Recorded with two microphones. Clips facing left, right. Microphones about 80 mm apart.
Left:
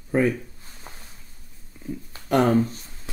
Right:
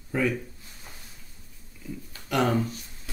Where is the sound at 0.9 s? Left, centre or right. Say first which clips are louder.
Left 5 dB; left.